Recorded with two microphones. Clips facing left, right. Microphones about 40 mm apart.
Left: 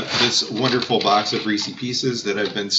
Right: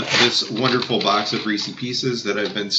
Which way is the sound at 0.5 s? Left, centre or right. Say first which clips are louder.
Left 3 dB; centre.